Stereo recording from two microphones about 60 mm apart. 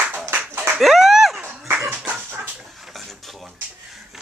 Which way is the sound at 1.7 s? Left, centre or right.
Right.